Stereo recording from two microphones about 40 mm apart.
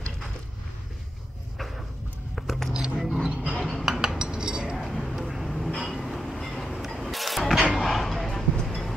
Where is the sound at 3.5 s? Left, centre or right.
Centre.